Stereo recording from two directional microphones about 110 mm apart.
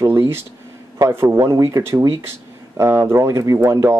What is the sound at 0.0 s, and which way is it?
Speech, 20° right (ahead or behind).